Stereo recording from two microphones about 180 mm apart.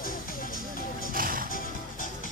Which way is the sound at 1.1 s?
50° right (ahead or behind).